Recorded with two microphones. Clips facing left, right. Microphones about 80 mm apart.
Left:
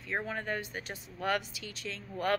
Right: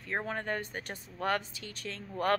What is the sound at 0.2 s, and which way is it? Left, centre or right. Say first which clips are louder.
Speech: right 1 dB; right.